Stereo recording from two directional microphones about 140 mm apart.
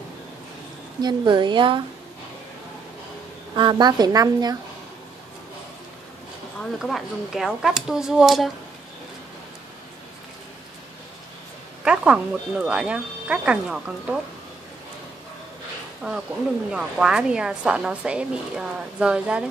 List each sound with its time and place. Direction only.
1.0 s a woman's voice: 35° right (ahead or behind)
3.5 s speech: 35° right (ahead or behind)
6.8 s speech: centre (ahead or behind)
11.8 s a woman's voice: 5° right (ahead or behind)
16.0 s a woman's voice: 5° right (ahead or behind)